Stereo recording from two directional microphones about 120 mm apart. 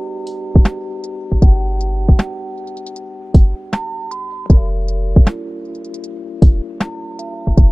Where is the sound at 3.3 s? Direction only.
Centre (ahead or behind).